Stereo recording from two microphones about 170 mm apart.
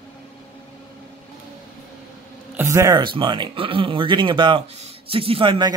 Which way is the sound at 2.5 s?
15° right (ahead or behind).